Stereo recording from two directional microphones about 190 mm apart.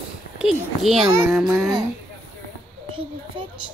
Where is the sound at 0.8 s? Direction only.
Centre (ahead or behind).